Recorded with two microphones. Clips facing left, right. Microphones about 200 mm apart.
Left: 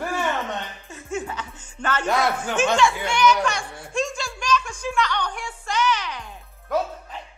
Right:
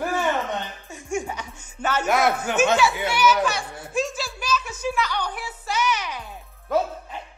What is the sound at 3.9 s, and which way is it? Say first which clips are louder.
Music: even; 5° right (ahead or behind).